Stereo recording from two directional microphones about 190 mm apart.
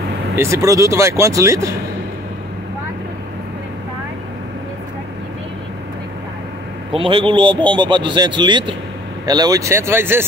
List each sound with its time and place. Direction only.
0.4 s speech: 15° right (ahead or behind)
6.9 s a man's voice: 25° right (ahead or behind); by 10.2 s 10° right (ahead or behind)